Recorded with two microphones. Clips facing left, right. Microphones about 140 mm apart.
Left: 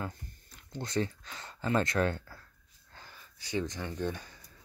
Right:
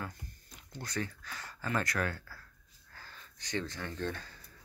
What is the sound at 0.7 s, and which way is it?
Speech, 25° left (ahead or behind).